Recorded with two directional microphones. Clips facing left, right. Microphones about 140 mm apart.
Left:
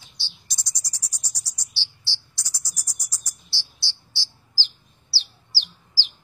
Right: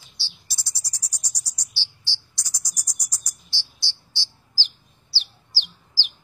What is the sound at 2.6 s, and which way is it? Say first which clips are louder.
Cricket: even; 15° right (ahead or behind).